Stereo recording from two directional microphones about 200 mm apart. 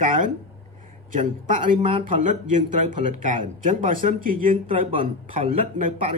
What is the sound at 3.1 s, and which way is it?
Speech, 40° right (ahead or behind).